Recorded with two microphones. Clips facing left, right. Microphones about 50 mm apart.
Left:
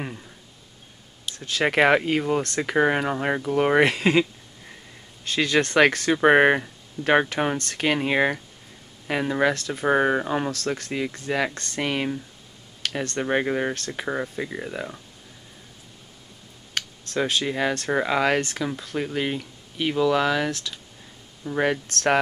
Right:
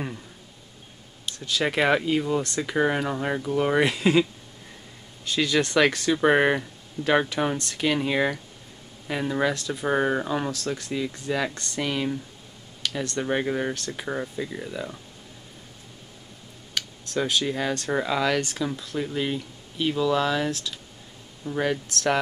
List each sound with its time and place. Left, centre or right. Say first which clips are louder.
1.4 s speech: left 4 dB; left
6.1 s speech: left 4 dB; left
9.8 s speech: left 3 dB; left
10.5 s speech: left 1 dB; left
13.7 s speech: left 2 dB; left
14.0 s speech: left 2 dB; left
16.7 s speech: left 1 dB; left